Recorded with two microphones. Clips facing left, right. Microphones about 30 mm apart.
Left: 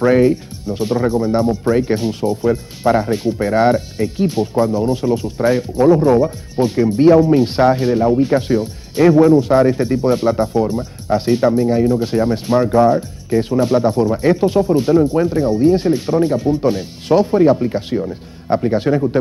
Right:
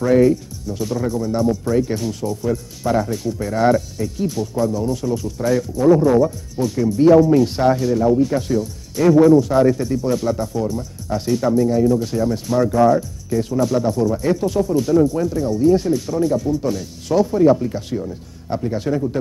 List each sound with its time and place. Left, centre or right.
0.0 s speech: left